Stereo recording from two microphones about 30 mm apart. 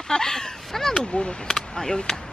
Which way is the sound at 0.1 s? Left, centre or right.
Left.